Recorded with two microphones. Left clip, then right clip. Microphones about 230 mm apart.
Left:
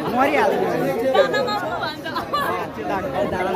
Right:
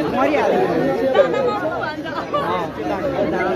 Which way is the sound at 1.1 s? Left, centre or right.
Left.